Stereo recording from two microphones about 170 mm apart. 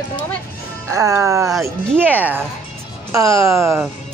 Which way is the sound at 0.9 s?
15° right (ahead or behind).